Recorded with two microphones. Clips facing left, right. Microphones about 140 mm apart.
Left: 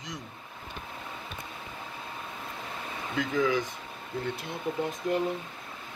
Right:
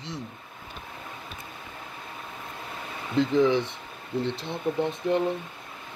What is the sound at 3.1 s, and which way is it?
Speech, 25° right (ahead or behind).